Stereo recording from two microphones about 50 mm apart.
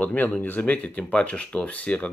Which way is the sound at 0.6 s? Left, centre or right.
Left.